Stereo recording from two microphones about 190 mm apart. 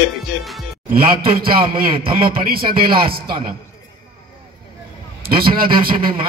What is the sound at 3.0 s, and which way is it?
Speech, 50° right (ahead or behind).